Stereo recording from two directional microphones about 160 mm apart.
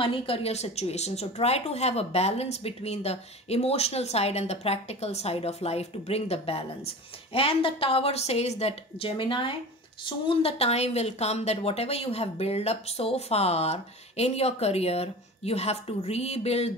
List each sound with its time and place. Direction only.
0.0 s a woman's voice: 35° left (ahead or behind)